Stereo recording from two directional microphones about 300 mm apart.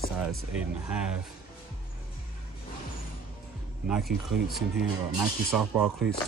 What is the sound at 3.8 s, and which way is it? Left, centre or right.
Speech, centre.